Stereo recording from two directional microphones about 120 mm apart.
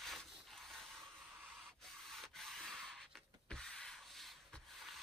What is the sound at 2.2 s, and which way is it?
Rub, 5° left (ahead or behind).